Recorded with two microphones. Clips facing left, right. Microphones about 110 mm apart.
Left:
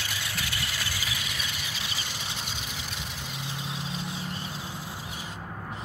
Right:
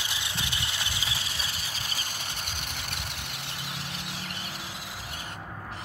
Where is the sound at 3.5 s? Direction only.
70° right (ahead or behind).